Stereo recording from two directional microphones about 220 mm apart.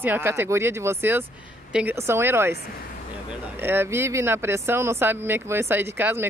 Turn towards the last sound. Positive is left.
turn(degrees=-10)  # may be behind; listen again after turning